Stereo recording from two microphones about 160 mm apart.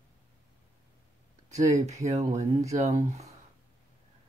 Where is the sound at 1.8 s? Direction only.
45° right (ahead or behind).